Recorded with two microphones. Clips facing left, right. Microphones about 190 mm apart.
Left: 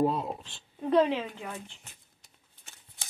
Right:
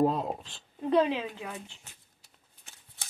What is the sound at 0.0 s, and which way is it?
Speech, 40° right (ahead or behind).